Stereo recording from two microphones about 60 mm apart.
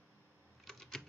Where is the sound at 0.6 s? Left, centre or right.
Centre.